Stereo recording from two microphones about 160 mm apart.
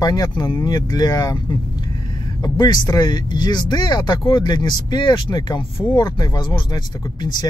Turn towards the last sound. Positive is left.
turn(degrees=25)  # may be behind; listen again after turning